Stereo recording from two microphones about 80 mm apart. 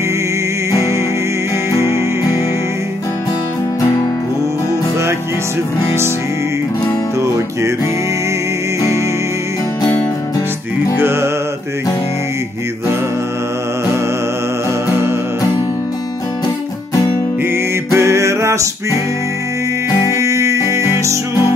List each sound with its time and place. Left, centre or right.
7.2 s music: right
11.0 s music: right
17.9 s music: right
20.1 s music: right